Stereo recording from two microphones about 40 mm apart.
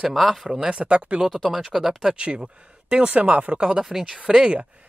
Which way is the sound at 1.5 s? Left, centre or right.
Centre.